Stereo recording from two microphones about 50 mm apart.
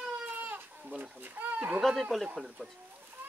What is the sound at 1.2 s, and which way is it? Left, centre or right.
Speech, right.